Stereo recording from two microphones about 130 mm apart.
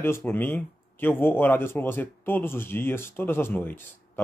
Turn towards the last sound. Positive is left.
turn(degrees=15)  # may be behind; listen again after turning